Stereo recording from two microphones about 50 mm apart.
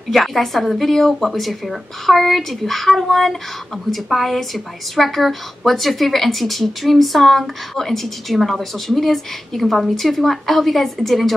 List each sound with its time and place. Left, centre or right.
0.1 s a woman's voice: centre